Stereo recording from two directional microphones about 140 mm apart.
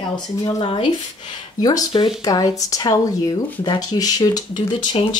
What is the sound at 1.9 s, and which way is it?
Speech, 35° left (ahead or behind).